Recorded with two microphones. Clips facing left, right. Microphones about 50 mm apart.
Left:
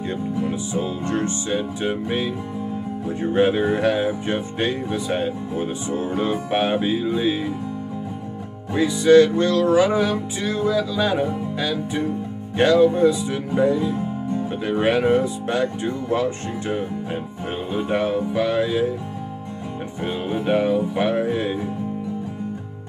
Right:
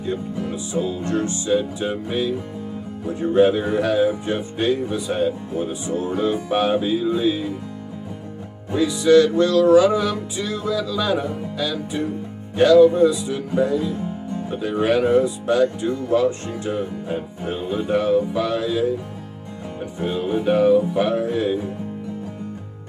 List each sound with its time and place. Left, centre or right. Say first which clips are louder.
1.0 s speech: right 1 dB; left
8.7 s speech: left 1 dB; left
14.8 s speech: right 1 dB; left
17.9 s music: right 3 dB; left
20.1 s speech: right 2 dB; left